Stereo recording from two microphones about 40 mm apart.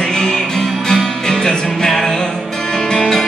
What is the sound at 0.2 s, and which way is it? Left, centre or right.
Music, centre.